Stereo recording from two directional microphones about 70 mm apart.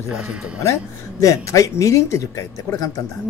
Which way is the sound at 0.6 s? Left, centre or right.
Left.